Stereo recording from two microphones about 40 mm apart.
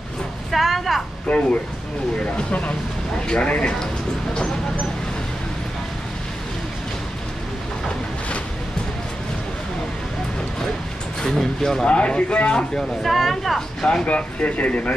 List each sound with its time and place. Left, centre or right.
0.5 s a woman's voice: centre
1.3 s speech: left
3.3 s speech: left
11.2 s speech: centre
11.8 s speech: left
13.0 s speech: centre
14.0 s speech: left